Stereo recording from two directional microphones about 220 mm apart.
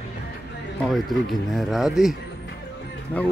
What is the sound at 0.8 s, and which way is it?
Speech, centre (ahead or behind).